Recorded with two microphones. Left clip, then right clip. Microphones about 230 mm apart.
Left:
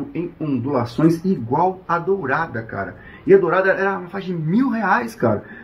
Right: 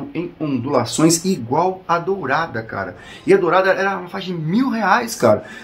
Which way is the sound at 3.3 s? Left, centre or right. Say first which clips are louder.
Even; centre.